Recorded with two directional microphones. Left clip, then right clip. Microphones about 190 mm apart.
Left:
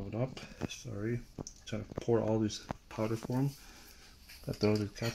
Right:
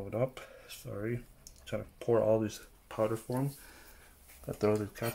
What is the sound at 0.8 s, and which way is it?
Speech, 15° left (ahead or behind).